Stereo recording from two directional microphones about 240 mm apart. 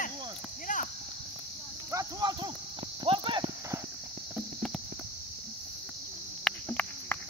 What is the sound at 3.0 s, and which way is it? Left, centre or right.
Clip-clop, centre.